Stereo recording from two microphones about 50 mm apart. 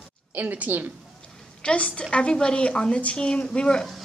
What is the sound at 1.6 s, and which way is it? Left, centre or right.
A woman's voice, centre.